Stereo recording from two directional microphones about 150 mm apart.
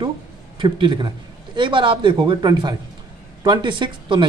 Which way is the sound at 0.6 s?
30° right (ahead or behind).